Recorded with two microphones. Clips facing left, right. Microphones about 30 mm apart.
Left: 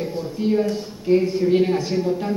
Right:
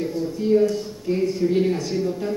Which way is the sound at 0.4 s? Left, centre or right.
Left.